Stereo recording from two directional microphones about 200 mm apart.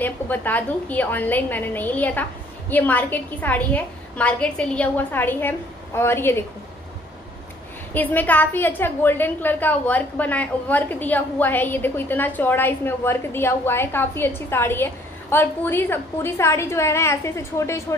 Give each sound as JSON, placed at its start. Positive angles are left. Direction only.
{"t": 0.0, "sound": "a woman's voice", "side_deg": 10}
{"t": 7.9, "sound": "a woman's voice", "side_deg": 10}